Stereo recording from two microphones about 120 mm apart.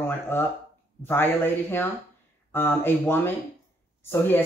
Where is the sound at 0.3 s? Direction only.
20° left (ahead or behind).